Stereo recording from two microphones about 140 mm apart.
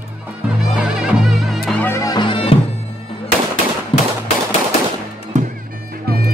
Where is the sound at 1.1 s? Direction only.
Centre (ahead or behind).